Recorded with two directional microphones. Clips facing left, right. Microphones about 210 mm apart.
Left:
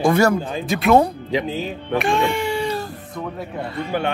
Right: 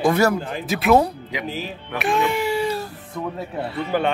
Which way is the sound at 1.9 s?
5° right (ahead or behind).